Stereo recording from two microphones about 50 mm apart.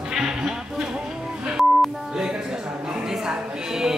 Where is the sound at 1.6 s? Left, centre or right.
Centre.